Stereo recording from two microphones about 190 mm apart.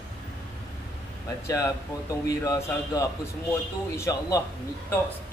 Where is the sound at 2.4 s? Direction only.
20° left (ahead or behind).